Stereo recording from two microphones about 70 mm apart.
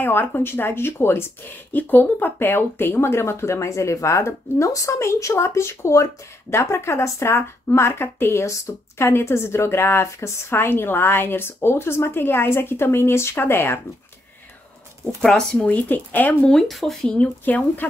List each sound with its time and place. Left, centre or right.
0.0 s speech: left
15.0 s speech: centre
15.7 s speech: left
16.4 s speech: centre
17.2 s speech: left